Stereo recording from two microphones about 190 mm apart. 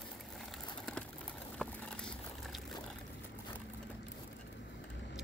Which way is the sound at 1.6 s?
5° left (ahead or behind).